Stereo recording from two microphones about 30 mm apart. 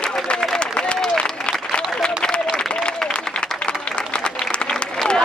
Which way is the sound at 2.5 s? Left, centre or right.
Left.